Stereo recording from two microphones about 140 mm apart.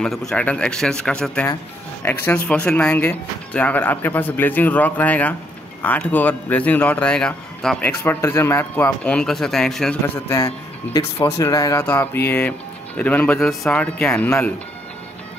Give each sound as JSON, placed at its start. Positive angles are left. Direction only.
{"t": 0.0, "sound": "speech", "side_deg": 5}
{"t": 10.0, "sound": "speech", "side_deg": 20}